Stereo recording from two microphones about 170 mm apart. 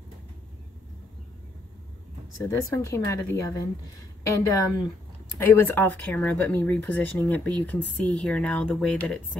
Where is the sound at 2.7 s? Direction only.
15° left (ahead or behind).